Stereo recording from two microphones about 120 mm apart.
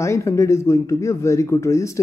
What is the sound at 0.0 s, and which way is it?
Speech, 25° left (ahead or behind).